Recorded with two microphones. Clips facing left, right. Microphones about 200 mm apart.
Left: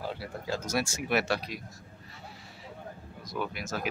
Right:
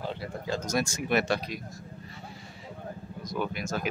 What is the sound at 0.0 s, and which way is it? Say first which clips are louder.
Speech: right 2 dB; 5° left (ahead or behind).